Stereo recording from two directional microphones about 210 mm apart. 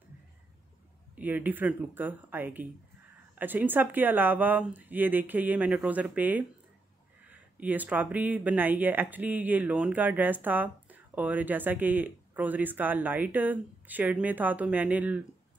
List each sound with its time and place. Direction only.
1.1 s speech: 10° right (ahead or behind)